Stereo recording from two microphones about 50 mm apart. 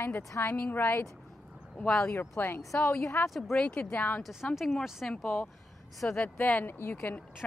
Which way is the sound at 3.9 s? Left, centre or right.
Left.